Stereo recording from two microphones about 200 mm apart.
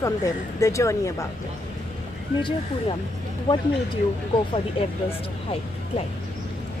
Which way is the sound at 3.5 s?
25° left (ahead or behind).